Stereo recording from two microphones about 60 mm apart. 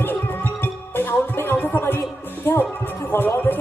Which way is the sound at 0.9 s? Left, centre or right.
Left.